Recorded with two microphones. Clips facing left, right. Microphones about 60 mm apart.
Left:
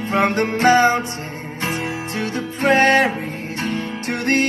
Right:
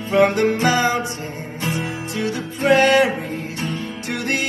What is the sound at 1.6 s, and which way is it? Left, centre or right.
Music, left.